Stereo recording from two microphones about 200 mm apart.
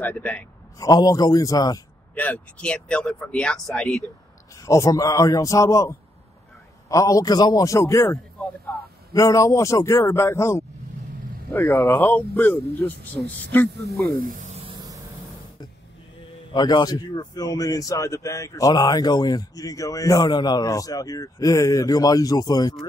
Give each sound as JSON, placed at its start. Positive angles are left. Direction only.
{"t": 0.0, "sound": "a man's voice", "side_deg": 5}
{"t": 2.1, "sound": "speech", "side_deg": 5}
{"t": 4.6, "sound": "a man's voice", "side_deg": 15}
{"t": 14.2, "sound": "a sound", "side_deg": -40}
{"t": 16.2, "sound": "a man's voice", "side_deg": 25}